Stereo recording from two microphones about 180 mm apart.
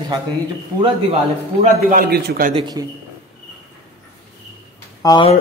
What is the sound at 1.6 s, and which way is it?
Speech, 50° right (ahead or behind).